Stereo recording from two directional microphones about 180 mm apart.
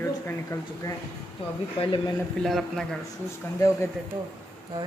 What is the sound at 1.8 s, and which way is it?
Speech, 25° left (ahead or behind).